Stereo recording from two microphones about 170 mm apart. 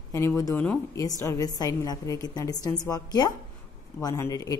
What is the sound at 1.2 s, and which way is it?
A woman's voice, 20° left (ahead or behind).